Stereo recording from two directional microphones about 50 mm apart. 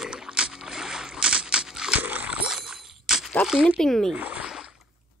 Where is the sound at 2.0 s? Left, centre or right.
Right.